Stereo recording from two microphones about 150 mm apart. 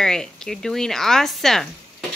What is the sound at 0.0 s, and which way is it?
Speech, 5° left (ahead or behind).